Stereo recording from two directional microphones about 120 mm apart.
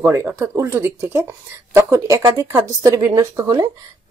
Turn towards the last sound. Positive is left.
turn(degrees=-30)  # may be behind; listen again after turning